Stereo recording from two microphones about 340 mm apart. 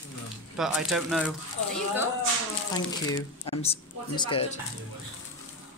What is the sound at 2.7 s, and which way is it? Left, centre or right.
Speech, centre.